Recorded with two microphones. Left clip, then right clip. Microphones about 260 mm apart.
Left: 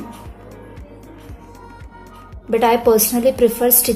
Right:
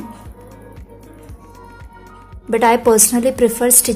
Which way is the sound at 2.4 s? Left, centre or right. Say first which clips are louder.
Right 1 dB; centre.